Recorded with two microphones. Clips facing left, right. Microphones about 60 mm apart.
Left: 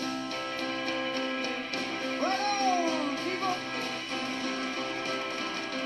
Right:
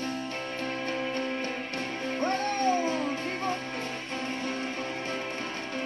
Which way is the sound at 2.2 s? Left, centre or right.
Right.